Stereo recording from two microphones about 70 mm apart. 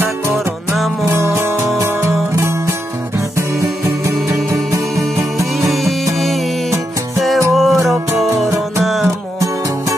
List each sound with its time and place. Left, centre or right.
1.0 s music: right
6.1 s music: centre
7.5 s music: centre